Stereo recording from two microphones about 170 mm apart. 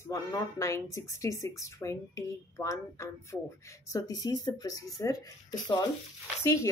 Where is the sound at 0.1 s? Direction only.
20° left (ahead or behind).